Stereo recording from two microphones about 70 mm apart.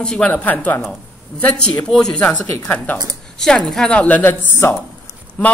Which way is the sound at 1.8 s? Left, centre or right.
Centre.